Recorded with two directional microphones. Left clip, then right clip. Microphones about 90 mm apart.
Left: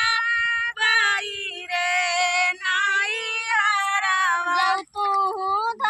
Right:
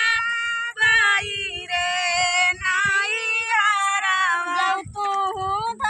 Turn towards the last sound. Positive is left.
turn(degrees=-65)  # may be behind; listen again after turning